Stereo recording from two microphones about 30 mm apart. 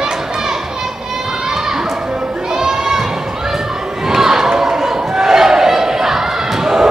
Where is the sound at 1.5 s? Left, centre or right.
Centre.